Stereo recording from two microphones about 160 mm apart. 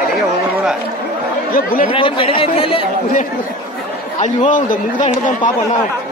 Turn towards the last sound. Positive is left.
turn(degrees=55)  # may be behind; listen again after turning